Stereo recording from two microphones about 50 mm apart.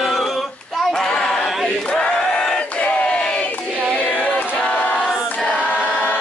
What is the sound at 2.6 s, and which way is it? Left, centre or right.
Battle cry, left.